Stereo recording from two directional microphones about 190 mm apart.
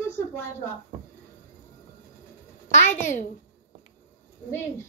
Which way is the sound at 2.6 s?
40° left (ahead or behind).